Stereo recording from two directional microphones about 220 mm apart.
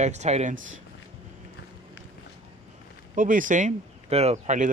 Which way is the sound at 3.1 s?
35° right (ahead or behind).